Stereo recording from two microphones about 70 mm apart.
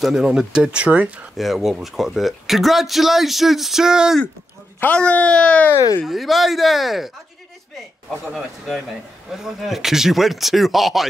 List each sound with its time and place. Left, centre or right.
0.0 s speech: centre
1.3 s speech: centre
4.9 s speech: centre
6.0 s speech: centre
8.3 s speech: centre